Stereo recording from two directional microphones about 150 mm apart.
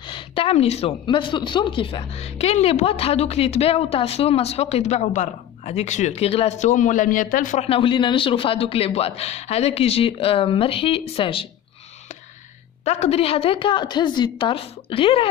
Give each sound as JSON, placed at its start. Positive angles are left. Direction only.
{"t": 0.0, "sound": "speech", "side_deg": 35}
{"t": 1.0, "sound": "a woman's voice", "side_deg": 30}
{"t": 7.6, "sound": "a man's voice", "side_deg": 35}
{"t": 12.8, "sound": "a man's voice", "side_deg": 45}